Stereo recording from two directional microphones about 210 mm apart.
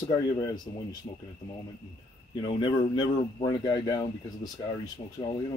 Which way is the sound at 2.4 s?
20° left (ahead or behind).